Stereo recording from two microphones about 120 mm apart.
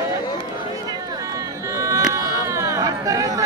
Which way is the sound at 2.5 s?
25° right (ahead or behind).